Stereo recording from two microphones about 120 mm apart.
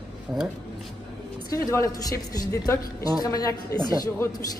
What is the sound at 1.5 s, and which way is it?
A woman's voice, 30° left (ahead or behind).